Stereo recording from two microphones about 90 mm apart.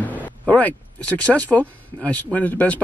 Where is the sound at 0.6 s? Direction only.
15° left (ahead or behind).